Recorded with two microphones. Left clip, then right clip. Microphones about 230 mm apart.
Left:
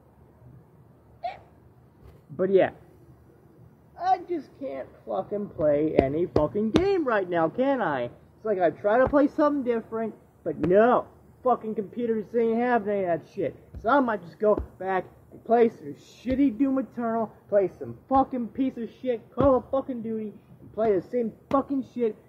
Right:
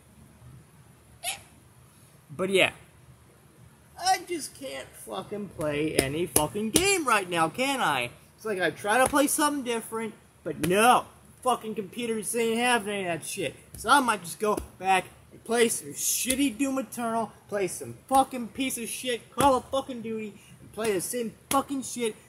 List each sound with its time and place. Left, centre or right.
2.3 s speech: right
4.4 s speech: centre
5.0 s speech: right
5.6 s speech: centre